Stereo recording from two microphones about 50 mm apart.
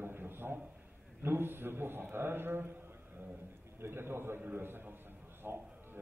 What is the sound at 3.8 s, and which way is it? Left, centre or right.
A man's voice, right.